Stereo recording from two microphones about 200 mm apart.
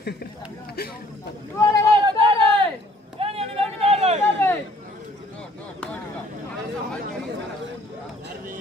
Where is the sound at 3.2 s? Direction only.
30° right (ahead or behind).